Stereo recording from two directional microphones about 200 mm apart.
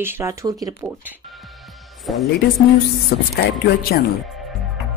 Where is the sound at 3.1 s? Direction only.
55° left (ahead or behind).